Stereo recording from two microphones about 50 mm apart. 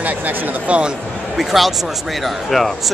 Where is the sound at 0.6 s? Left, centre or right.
Right.